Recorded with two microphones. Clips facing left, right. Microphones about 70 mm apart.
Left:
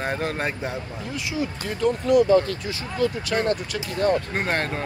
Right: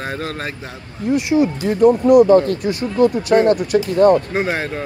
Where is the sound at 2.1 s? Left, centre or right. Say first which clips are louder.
Right 4 dB; right.